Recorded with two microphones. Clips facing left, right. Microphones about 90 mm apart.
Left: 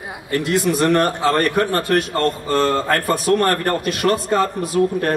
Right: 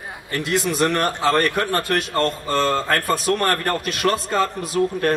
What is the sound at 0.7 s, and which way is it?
A man's voice, 20° left (ahead or behind).